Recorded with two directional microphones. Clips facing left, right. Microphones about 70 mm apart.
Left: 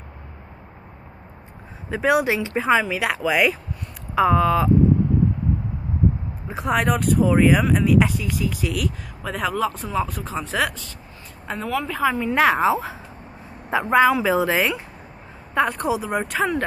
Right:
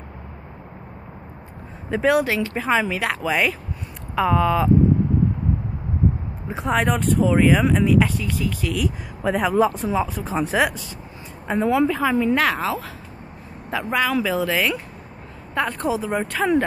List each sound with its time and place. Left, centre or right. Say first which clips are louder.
1.9 s speech: right 1 dB; centre
2.7 s speech: left 2 dB; centre
6.4 s speech: even; centre
9.2 s speech: right 5 dB; centre
11.9 s speech: right 2 dB; centre
12.4 s speech: left 4 dB; centre
15.5 s speech: left 2 dB; centre